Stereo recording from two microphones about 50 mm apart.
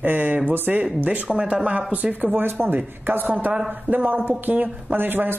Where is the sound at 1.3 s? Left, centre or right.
Right.